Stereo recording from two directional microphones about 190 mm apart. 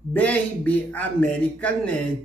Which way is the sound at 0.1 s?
10° left (ahead or behind).